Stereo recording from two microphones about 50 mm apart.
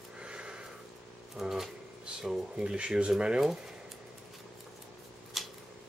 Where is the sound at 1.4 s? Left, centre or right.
Centre.